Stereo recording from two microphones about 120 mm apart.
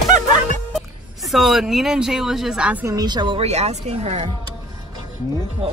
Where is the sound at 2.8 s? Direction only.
35° right (ahead or behind).